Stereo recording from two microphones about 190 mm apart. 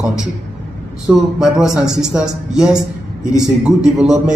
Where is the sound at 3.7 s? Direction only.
5° right (ahead or behind).